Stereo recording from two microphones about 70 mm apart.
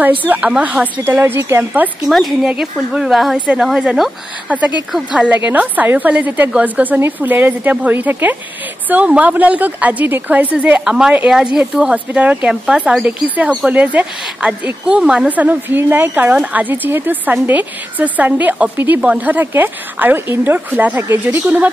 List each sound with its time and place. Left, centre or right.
0.3 s a woman's voice: centre
1.0 s a woman's voice: right
1.6 s a woman's voice: right
2.0 s speech: centre
2.5 s speech: centre
3.3 s speech: centre
4.5 s a woman's voice: right
5.3 s a woman's voice: right
10.9 s a woman's voice: centre; by 21.6 s right